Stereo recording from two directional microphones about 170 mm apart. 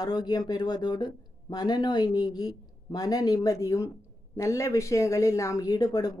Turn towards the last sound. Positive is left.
turn(degrees=20)  # may be behind; listen again after turning